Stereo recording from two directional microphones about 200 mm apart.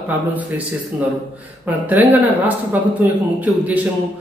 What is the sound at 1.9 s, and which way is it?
A man's voice, 10° right (ahead or behind).